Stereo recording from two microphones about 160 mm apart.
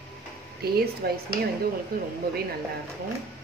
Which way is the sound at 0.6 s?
80° right.